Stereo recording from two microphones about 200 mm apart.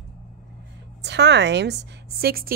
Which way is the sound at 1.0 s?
60° right (ahead or behind).